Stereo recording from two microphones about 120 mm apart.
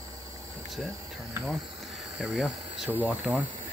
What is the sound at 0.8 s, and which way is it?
Speech, 25° right (ahead or behind).